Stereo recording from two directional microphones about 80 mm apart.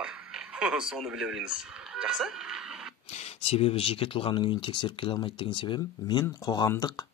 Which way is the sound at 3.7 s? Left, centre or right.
Left.